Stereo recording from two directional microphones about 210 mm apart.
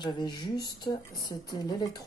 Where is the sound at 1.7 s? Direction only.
20° left (ahead or behind).